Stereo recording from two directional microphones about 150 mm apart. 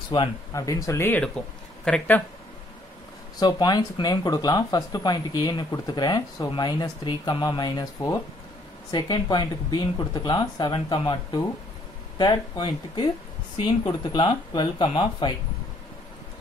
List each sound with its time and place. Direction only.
0.1 s speech: 25° left (ahead or behind); by 2.2 s 10° left (ahead or behind)
3.3 s speech: 30° left (ahead or behind)